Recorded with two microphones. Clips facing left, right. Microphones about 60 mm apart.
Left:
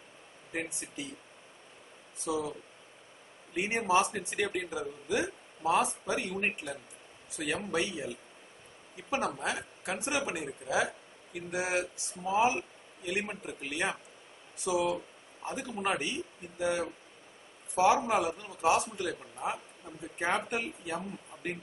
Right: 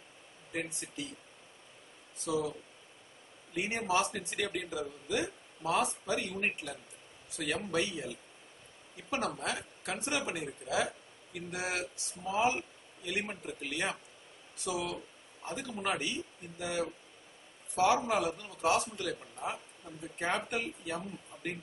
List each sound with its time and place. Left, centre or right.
0.5 s a man's voice: centre
2.2 s a man's voice: centre
3.5 s a man's voice: left
9.1 s a man's voice: centre